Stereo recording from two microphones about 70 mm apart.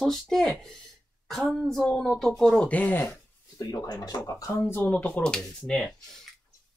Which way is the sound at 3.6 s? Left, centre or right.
Left.